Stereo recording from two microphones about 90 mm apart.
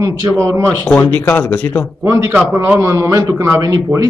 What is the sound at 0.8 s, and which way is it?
Speech, 15° left (ahead or behind).